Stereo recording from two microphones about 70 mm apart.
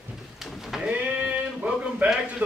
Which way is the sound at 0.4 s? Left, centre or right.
Centre.